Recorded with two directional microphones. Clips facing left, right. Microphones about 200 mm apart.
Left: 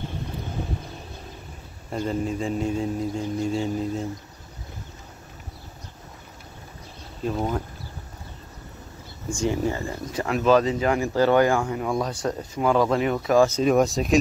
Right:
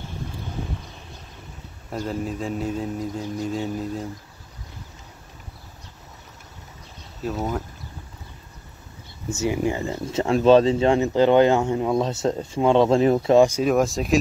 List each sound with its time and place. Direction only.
1.9 s speech: centre (ahead or behind)
7.2 s speech: 5° right (ahead or behind)
9.4 s speech: 10° right (ahead or behind); by 13.5 s 25° right (ahead or behind)
13.6 s speech: centre (ahead or behind)